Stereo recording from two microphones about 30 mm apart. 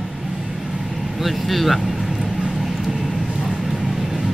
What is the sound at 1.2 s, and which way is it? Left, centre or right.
Vehicle, centre.